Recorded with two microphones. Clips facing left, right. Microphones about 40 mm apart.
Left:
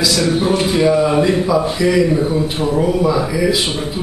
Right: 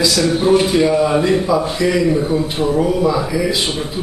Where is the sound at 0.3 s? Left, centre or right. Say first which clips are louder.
Right 2 dB; centre.